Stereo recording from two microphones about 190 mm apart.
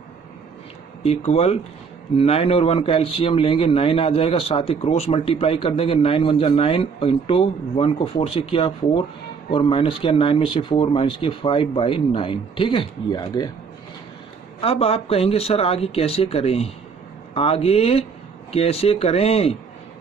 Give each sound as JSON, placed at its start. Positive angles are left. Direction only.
{"t": 1.0, "sound": "speech", "side_deg": 35}
{"t": 14.6, "sound": "speech", "side_deg": 30}